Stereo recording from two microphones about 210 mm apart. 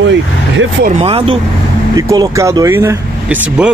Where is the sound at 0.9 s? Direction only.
30° right (ahead or behind).